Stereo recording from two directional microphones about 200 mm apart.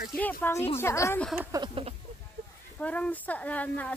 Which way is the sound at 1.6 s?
30° right (ahead or behind).